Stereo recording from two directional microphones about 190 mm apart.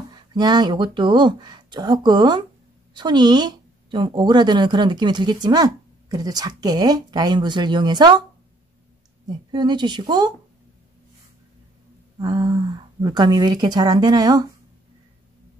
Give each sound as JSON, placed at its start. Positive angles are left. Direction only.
{"t": 0.1, "sound": "a woman's voice", "side_deg": -20}
{"t": 9.5, "sound": "a woman's voice", "side_deg": -25}
{"t": 12.2, "sound": "a woman's voice", "side_deg": -20}